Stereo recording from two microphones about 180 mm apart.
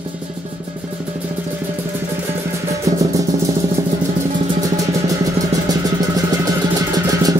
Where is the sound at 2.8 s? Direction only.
20° right (ahead or behind).